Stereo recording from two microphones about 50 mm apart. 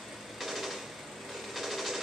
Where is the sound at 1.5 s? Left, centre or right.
Centre.